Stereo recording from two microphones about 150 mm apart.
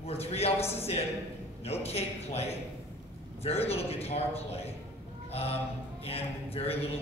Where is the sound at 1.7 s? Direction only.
45° left (ahead or behind).